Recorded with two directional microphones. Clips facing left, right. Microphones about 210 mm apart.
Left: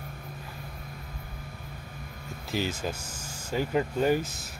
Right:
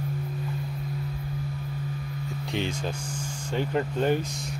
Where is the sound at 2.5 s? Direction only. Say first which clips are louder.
Even; 5° left (ahead or behind).